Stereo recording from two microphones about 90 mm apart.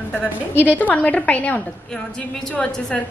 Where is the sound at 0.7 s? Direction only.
20° left (ahead or behind).